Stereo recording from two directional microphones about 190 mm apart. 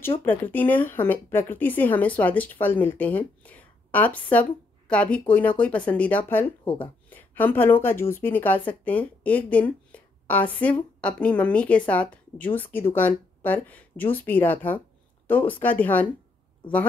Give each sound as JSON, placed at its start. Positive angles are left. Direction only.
{"t": 0.2, "sound": "speech", "side_deg": 10}
{"t": 6.6, "sound": "speech", "side_deg": 25}
{"t": 7.1, "sound": "speech", "side_deg": 10}